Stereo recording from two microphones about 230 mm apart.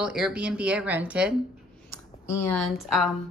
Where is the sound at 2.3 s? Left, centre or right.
Centre.